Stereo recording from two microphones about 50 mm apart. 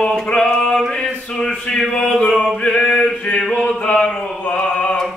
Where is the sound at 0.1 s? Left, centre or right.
Centre.